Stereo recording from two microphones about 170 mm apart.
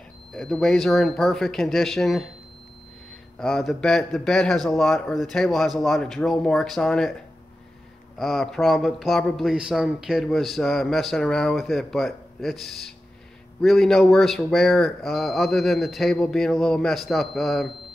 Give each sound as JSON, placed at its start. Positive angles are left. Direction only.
{"t": 0.3, "sound": "a man's voice", "side_deg": 5}
{"t": 3.3, "sound": "a man's voice", "side_deg": 0}
{"t": 8.2, "sound": "a man's voice", "side_deg": 0}